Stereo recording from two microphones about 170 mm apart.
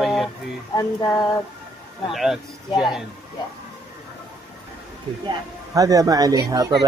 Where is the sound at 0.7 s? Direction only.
20° left (ahead or behind).